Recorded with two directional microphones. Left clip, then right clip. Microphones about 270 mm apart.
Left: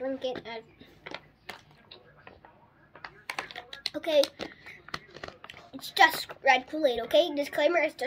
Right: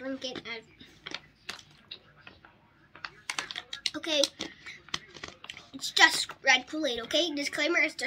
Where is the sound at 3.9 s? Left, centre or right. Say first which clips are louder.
Left 3 dB; centre.